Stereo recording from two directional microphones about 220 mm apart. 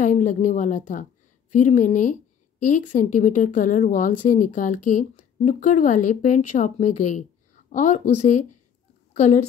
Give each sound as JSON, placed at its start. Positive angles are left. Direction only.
{"t": 0.0, "sound": "a woman's voice", "side_deg": 35}